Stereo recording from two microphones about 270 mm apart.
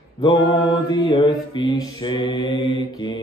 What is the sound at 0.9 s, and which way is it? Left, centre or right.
Mantra, centre.